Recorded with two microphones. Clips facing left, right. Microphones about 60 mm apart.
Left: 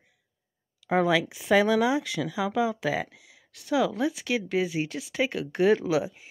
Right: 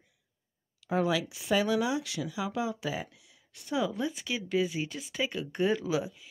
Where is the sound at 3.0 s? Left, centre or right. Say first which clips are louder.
Left 7 dB; left.